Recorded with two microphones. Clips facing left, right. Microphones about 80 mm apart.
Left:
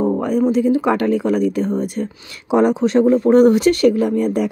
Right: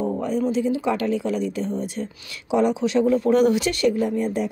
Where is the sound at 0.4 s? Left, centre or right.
Left.